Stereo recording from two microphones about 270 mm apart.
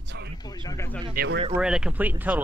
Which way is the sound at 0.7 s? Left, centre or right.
Centre.